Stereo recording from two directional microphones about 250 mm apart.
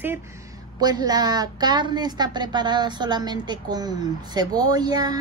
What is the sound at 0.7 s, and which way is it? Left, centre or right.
A woman's voice, centre.